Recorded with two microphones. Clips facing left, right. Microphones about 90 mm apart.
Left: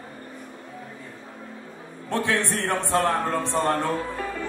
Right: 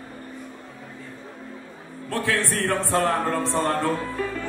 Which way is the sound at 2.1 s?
20° left (ahead or behind).